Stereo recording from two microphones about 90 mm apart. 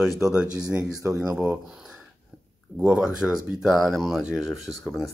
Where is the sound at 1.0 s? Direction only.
35° right (ahead or behind).